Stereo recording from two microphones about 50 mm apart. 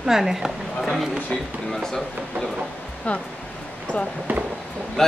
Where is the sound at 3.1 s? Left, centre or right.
Left.